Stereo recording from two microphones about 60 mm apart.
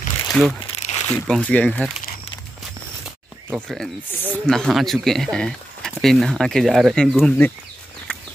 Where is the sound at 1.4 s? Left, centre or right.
Centre.